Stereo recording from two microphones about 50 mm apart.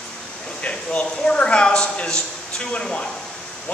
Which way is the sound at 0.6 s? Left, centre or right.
Left.